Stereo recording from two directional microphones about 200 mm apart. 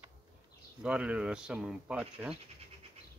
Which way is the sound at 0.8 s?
5° right (ahead or behind).